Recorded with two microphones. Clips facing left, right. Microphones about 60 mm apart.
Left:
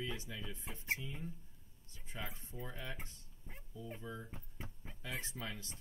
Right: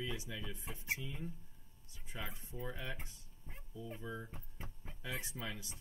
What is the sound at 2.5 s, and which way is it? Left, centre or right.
Speech, centre.